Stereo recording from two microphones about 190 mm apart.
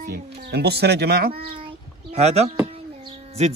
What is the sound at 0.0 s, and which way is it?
A child's voice, 60° right (ahead or behind).